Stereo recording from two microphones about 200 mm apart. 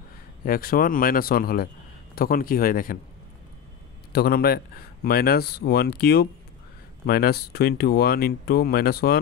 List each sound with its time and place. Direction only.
0.5 s speech: 45° left (ahead or behind)
4.1 s speech: 50° left (ahead or behind)